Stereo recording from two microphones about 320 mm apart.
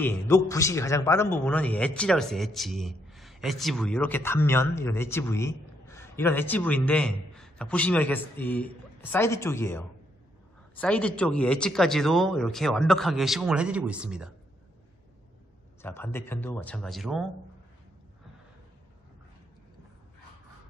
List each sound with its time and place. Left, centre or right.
0.0 s a man's voice: centre
15.8 s a man's voice: centre